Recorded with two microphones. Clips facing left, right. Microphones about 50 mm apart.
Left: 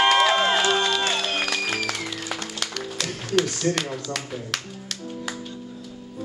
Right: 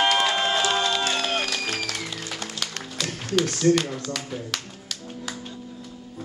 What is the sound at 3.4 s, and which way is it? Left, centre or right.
Speech, centre.